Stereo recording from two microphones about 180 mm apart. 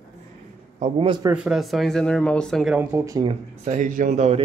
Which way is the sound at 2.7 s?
15° right (ahead or behind).